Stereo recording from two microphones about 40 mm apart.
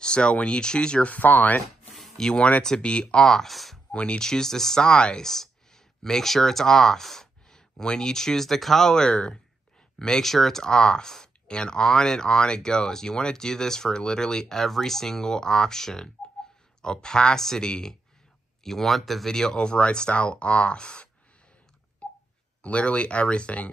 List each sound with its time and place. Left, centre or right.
0.0 s speech: left
1.0 s speech: left
2.1 s speech: left
3.4 s speech: centre
3.9 s speech: left
4.3 s speech: centre
5.2 s speech: centre
10.2 s speech: centre
19.6 s speech: left
22.0 s wail: left
22.6 s speech: left